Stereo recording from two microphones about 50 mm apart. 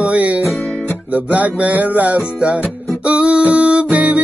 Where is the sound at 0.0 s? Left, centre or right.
Right.